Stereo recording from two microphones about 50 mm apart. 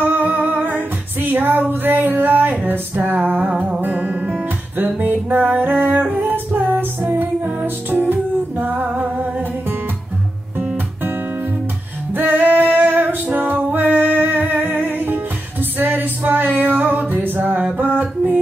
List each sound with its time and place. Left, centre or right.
0.0 s music: right
4.7 s music: right
7.0 s music: right
8.7 s music: right
12.1 s music: right
15.8 s male singing: right
17.7 s music: right